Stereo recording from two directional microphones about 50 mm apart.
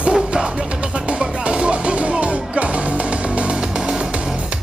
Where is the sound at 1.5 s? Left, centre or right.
Right.